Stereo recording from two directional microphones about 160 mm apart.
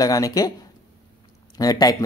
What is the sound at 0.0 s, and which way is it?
Speech, 20° left (ahead or behind).